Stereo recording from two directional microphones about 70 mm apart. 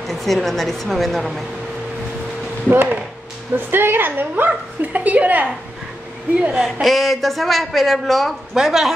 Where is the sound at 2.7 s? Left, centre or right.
Right.